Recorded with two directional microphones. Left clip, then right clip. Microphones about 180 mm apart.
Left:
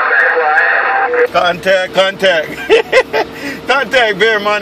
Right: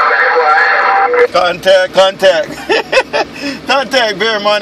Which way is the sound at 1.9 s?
25° right (ahead or behind).